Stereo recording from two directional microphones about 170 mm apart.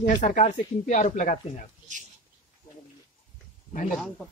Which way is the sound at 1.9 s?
45° right (ahead or behind).